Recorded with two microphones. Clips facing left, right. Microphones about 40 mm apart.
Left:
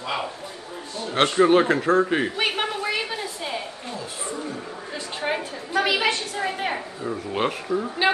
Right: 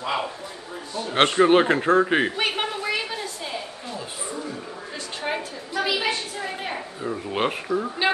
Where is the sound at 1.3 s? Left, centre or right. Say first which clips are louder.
Left 1 dB; right.